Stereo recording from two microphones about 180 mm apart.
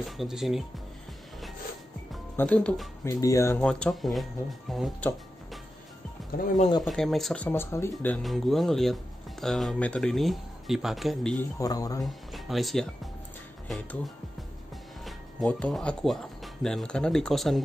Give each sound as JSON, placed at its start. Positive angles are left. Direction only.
{"t": 0.0, "sound": "speech", "side_deg": 0}
{"t": 2.3, "sound": "speech", "side_deg": 10}
{"t": 3.1, "sound": "speech", "side_deg": 15}
{"t": 3.6, "sound": "speech", "side_deg": 0}
{"t": 6.3, "sound": "speech", "side_deg": 45}
{"t": 6.8, "sound": "speech", "side_deg": 0}
{"t": 11.3, "sound": "speech", "side_deg": 20}
{"t": 12.0, "sound": "speech", "side_deg": 0}
{"t": 15.0, "sound": "speech", "side_deg": 0}